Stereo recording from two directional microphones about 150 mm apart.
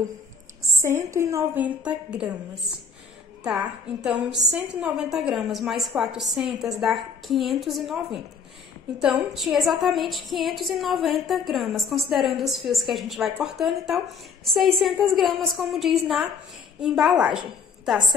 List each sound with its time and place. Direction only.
0.6 s a woman's voice: 20° right (ahead or behind)
3.4 s a woman's voice: 5° right (ahead or behind)